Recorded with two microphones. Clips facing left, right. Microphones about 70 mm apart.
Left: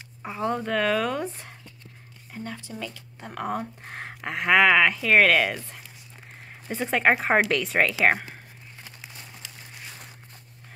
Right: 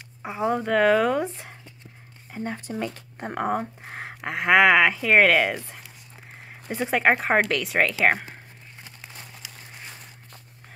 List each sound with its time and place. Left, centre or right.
0.2 s speech: centre
2.3 s speech: right
3.8 s speech: centre